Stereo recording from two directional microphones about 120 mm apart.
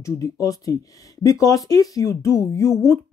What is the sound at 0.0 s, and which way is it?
A woman's voice, 25° left (ahead or behind).